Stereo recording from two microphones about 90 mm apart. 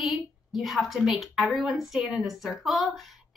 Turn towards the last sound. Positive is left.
turn(degrees=0)  # may be behind; listen again after turning